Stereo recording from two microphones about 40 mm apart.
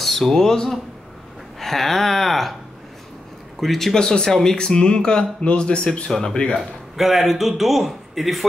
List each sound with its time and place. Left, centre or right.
0.0 s speech: centre
3.6 s speech: centre
3.9 s speech: centre
6.5 s a man's voice: centre